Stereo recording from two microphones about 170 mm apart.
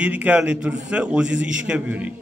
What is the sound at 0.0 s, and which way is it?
A man's voice, 10° right (ahead or behind).